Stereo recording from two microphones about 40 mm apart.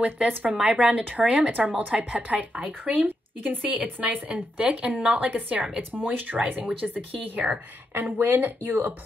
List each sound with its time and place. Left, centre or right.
0.0 s a woman's voice: right
0.7 s a woman's voice: right
4.3 s a woman's voice: right
7.9 s speech: right